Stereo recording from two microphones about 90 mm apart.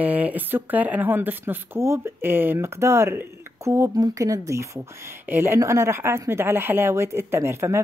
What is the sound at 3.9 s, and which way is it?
Speech, 40° right (ahead or behind).